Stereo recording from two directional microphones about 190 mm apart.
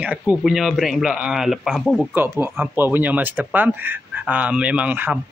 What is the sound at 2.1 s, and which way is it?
Speech, 10° right (ahead or behind).